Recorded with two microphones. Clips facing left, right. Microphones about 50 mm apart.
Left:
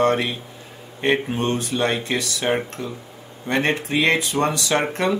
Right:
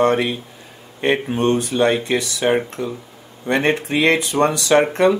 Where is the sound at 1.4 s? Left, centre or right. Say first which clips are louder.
Right 5 dB; centre.